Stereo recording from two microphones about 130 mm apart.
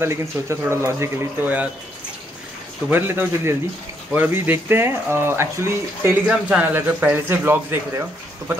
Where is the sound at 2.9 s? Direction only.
20° right (ahead or behind).